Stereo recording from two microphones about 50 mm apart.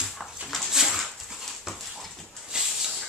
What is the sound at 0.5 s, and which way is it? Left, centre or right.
Dog, centre.